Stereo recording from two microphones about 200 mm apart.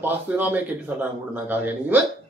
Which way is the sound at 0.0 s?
10° right (ahead or behind).